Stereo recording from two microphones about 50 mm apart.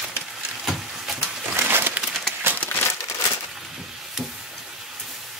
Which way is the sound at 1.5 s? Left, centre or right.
Right.